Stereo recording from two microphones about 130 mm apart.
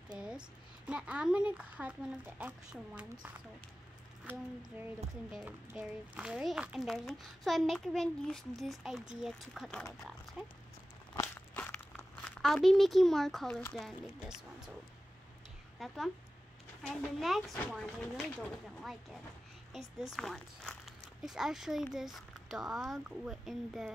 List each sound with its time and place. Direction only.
0.1 s a sound: 5° right (ahead or behind)
0.8 s speech: 10° right (ahead or behind)
4.3 s a child's voice: 15° right (ahead or behind); by 9.8 s 5° left (ahead or behind)
11.5 s crumpling: 15° left (ahead or behind)
13.7 s a child's voice: centre (ahead or behind)
15.8 s a child's voice: centre (ahead or behind)